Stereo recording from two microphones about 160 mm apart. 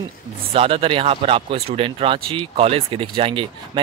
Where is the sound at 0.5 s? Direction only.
35° right (ahead or behind).